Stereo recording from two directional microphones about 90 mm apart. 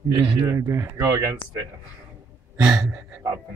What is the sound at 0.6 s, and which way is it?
Speech, 30° right (ahead or behind).